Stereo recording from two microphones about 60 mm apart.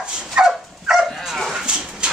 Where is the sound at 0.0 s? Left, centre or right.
Centre.